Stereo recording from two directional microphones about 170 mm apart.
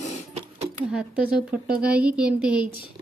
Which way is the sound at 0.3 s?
40° right (ahead or behind).